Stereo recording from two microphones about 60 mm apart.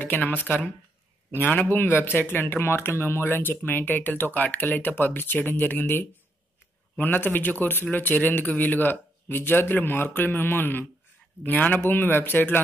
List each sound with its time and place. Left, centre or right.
0.0 s speech: left